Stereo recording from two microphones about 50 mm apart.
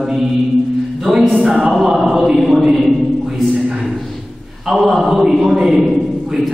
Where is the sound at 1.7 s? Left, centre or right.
Centre.